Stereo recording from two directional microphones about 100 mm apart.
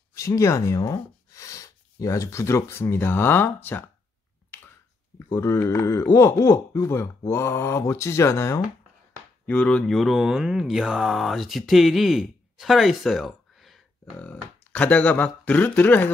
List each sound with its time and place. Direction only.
0.1 s speech: 30° left (ahead or behind)
5.3 s speech: 30° left (ahead or behind)
9.5 s speech: 10° left (ahead or behind)
13.6 s a sound: centre (ahead or behind)
14.2 s speech: 15° left (ahead or behind)